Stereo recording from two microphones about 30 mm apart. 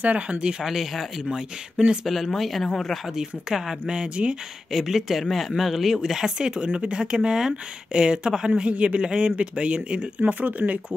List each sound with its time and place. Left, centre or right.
0.0 s speech: right
0.4 s speech: right
0.7 s speech: centre
3.2 s speech: centre
3.9 s speech: right
4.7 s speech: centre
6.3 s speech: right
7.2 s speech: right
8.6 s speech: right
10.4 s speech: right